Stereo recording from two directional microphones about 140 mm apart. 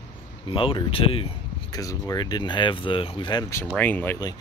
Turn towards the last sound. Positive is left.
turn(degrees=10)  # may be behind; listen again after turning